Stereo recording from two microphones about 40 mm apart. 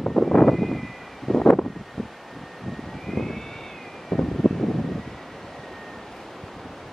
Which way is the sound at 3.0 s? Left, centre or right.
Centre.